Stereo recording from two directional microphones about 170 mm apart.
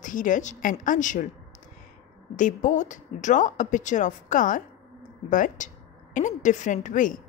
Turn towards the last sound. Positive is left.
turn(degrees=50)  # may be behind; listen again after turning